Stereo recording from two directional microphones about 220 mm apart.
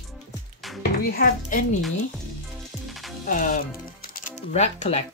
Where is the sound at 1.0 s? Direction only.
40° left (ahead or behind).